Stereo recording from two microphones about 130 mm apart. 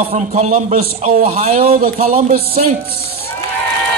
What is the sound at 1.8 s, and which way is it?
Speech, 90° right.